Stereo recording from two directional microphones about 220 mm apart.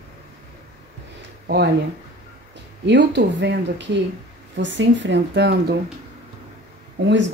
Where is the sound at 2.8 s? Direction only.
50° right (ahead or behind).